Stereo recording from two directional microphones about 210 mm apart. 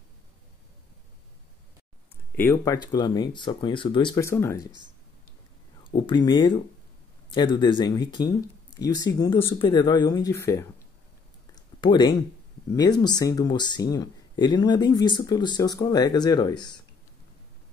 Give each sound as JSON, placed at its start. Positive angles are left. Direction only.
{"t": 2.3, "sound": "speech", "side_deg": 10}
{"t": 5.9, "sound": "speech", "side_deg": 25}
{"t": 11.5, "sound": "a sound", "side_deg": 20}
{"t": 12.7, "sound": "speech", "side_deg": 20}